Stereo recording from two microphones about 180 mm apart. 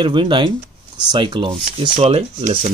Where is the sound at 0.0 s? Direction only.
25° right (ahead or behind).